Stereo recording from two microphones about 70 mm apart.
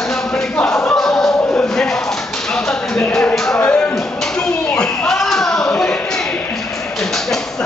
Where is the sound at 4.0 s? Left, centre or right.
Centre.